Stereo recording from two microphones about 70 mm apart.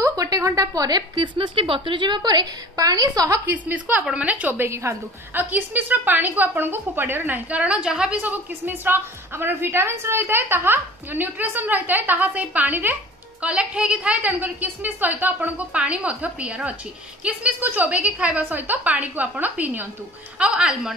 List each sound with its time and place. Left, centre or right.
0.0 s a woman's voice: right
3.4 s a woman's voice: right
4.6 s a woman's voice: right
5.4 s a woman's voice: right
8.2 s a woman's voice: right
13.4 s a woman's voice: centre